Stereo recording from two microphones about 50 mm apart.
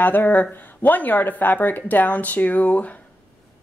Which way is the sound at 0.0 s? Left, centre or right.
Left.